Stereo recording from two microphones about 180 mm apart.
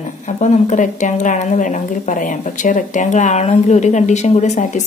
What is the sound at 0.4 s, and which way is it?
Speech, 45° left (ahead or behind).